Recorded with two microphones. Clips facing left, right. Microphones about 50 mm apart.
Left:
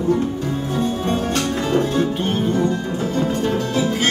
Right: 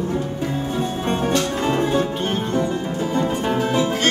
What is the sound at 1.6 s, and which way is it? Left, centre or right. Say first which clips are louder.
Music: left 2 dB; centre.